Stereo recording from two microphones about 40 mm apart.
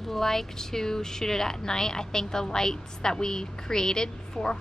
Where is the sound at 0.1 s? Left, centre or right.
Centre.